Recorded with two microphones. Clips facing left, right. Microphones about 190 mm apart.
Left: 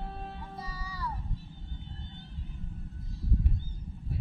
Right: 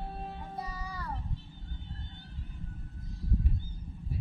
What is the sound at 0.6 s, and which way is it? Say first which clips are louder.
Music: even; 55° right (ahead or behind).